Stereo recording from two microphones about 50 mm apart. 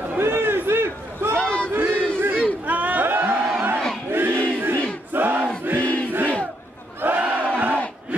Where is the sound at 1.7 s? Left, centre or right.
Right.